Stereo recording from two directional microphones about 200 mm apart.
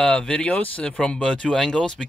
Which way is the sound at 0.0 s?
5° left (ahead or behind).